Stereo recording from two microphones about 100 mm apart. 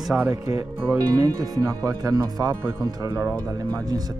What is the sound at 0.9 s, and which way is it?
Speech, 35° right (ahead or behind).